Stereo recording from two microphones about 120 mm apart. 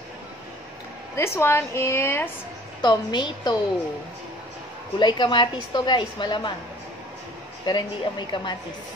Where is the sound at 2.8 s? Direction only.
40° left (ahead or behind).